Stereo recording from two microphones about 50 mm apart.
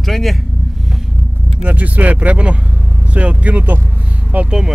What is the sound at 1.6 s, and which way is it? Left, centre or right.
Speech, right.